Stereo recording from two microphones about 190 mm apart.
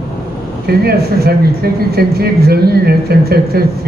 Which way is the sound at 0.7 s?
55° right (ahead or behind).